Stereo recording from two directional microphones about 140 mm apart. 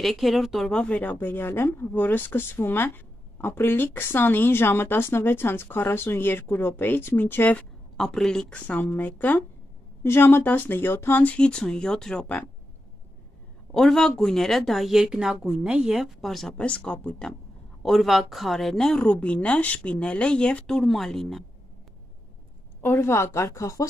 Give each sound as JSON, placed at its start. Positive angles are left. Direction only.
{"t": 0.0, "sound": "speech", "side_deg": 0}
{"t": 13.7, "sound": "a woman's voice", "side_deg": 5}
{"t": 22.8, "sound": "speech", "side_deg": 15}